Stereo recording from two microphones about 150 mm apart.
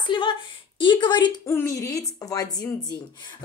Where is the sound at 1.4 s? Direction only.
15° left (ahead or behind).